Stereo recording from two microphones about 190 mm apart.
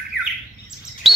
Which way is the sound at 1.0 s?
Centre (ahead or behind).